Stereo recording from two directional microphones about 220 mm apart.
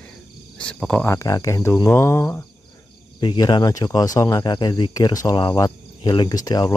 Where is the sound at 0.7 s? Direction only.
5° left (ahead or behind).